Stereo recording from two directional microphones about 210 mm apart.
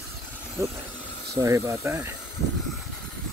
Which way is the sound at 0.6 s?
15° right (ahead or behind).